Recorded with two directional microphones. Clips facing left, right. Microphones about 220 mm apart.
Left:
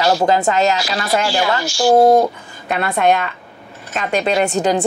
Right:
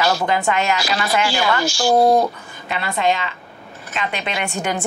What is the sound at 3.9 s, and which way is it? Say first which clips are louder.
Speech: left 8 dB; 40° left (ahead or behind).